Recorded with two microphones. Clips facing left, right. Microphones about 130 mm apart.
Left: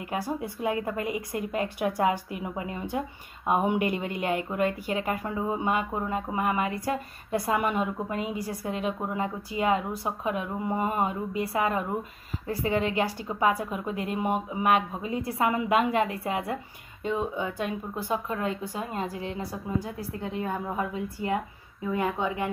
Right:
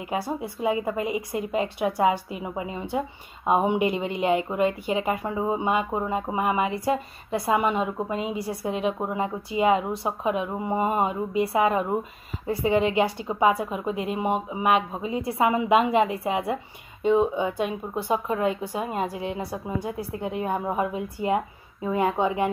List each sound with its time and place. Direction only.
0.3 s a woman's voice: 15° right (ahead or behind)